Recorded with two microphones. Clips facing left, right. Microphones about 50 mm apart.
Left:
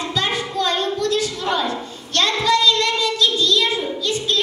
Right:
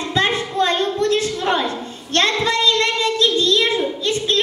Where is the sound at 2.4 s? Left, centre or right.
Right.